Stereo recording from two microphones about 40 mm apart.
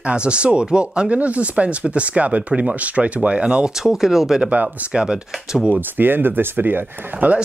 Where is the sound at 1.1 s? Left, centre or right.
Right.